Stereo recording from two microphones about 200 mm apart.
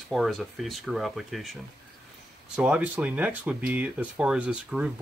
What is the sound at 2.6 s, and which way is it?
Speech, 5° right (ahead or behind).